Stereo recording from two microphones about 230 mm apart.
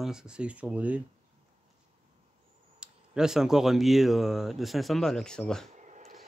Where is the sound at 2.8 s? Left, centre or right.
Centre.